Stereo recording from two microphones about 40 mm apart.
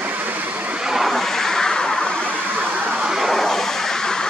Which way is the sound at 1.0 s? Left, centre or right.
Centre.